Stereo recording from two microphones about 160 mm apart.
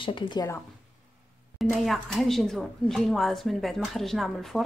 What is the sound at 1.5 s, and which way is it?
A woman's voice, centre (ahead or behind).